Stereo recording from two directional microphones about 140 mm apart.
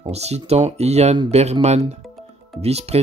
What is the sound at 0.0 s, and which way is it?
Speech, 50° right (ahead or behind).